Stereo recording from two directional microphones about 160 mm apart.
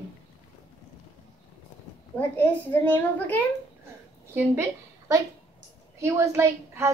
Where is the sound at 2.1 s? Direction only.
10° left (ahead or behind).